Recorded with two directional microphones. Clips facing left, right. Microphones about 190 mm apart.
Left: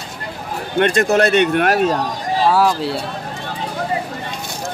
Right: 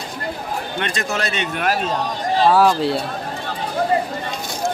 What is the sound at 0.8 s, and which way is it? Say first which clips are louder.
Speech: left 12 dB; 55° left (ahead or behind).